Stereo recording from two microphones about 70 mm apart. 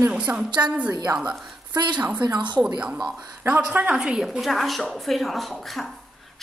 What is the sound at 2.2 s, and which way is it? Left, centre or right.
Speech, right.